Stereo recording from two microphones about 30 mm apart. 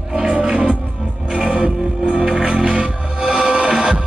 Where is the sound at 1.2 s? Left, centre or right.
Right.